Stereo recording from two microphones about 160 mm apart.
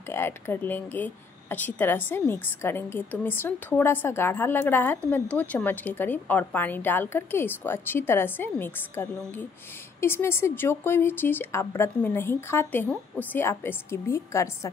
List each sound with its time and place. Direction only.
0.1 s speech: 15° left (ahead or behind)